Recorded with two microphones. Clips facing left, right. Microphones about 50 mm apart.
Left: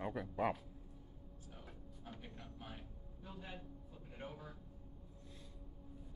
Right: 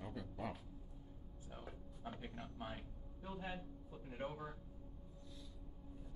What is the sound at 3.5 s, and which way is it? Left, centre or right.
A woman's voice, centre.